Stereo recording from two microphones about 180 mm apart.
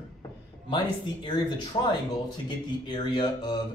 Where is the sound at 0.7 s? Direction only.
25° left (ahead or behind).